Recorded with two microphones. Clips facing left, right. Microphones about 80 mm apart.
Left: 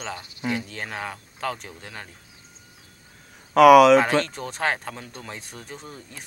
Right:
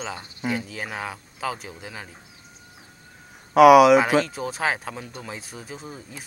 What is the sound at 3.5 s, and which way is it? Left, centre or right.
A man's voice, centre.